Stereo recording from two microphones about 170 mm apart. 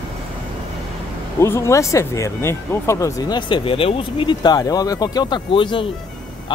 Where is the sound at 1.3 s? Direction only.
15° left (ahead or behind).